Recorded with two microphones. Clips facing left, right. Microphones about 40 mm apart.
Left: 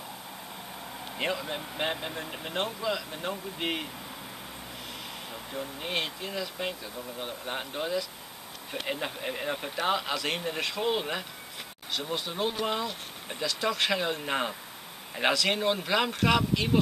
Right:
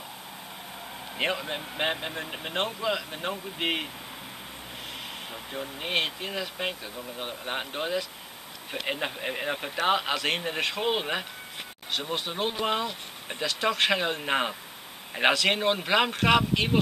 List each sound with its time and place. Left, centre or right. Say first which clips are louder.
1.1 s speech: right 3 dB; right
1.4 s speech: right 2 dB; centre
5.3 s speech: even; right